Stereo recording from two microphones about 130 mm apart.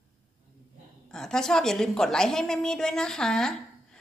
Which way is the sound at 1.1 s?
5° left (ahead or behind).